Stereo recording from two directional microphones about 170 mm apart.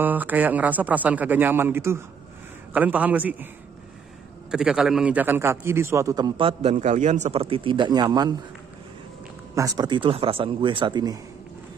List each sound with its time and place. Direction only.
0.0 s a man's voice: 10° right (ahead or behind)
4.5 s a man's voice: 5° right (ahead or behind); by 8.4 s 25° right (ahead or behind)
9.6 s a man's voice: 20° right (ahead or behind)